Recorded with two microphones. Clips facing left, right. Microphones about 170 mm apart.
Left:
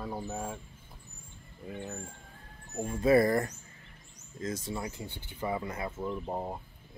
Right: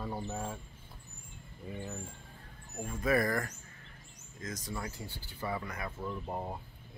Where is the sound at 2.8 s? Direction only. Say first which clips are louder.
Left 6 dB; 25° left (ahead or behind).